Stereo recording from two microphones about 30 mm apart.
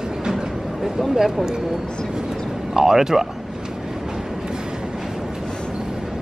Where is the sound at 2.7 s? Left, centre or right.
Centre.